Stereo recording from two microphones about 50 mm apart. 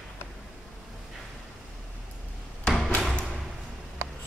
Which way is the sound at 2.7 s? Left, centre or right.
Centre.